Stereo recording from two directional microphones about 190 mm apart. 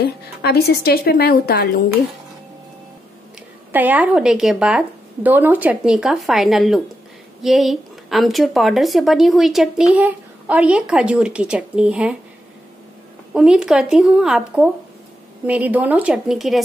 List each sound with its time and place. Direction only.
0.0 s a woman's voice: 55° left (ahead or behind)
3.7 s a woman's voice: 10° right (ahead or behind)
13.3 s a woman's voice: 5° right (ahead or behind)